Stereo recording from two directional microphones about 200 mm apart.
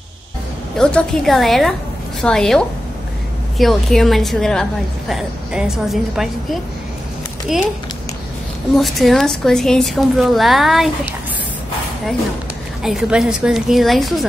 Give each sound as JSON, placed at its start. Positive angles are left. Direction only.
{"t": 0.7, "sound": "a woman's voice", "side_deg": 0}
{"t": 7.5, "sound": "a woman's voice", "side_deg": 0}
{"t": 8.7, "sound": "a woman's voice", "side_deg": 0}
{"t": 12.8, "sound": "a woman's voice", "side_deg": 0}